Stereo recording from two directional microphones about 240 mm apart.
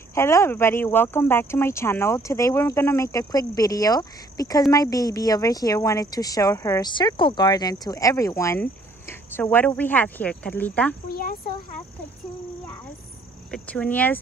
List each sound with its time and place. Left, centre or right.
0.1 s speech: centre
11.1 s speech: left
13.5 s speech: centre